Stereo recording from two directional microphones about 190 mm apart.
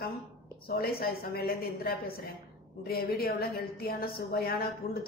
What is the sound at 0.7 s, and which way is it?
A woman's voice, 55° left (ahead or behind).